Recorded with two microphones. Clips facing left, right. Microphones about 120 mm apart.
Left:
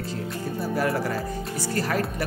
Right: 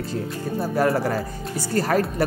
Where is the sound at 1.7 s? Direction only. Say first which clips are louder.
Right 6 dB; 45° right (ahead or behind).